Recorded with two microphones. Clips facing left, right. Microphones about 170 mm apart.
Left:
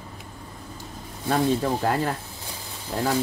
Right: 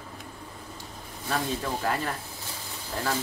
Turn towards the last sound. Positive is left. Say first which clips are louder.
# left 6 dB
turn(degrees=25)  # may be behind; listen again after turning